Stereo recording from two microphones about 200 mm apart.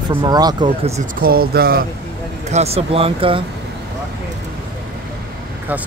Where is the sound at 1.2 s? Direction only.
50° right (ahead or behind).